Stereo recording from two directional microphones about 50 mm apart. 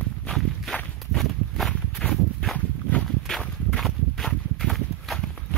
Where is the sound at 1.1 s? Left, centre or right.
Centre.